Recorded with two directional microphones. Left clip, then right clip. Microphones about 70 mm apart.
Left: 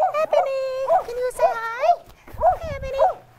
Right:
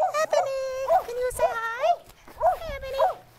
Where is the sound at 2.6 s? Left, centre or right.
Centre.